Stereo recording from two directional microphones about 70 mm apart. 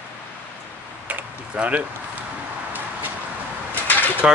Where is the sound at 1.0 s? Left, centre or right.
Centre.